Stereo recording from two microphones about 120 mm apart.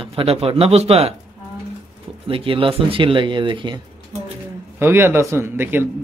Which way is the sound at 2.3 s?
50° right (ahead or behind).